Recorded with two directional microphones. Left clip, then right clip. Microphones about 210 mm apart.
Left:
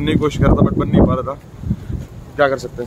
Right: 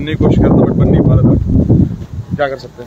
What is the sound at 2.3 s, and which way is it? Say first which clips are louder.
Speech: left 1 dB; 25° left (ahead or behind).